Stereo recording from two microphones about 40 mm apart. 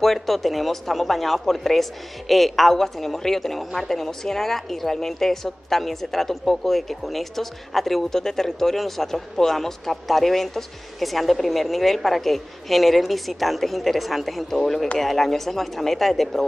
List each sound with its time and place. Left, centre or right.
0.0 s speech: centre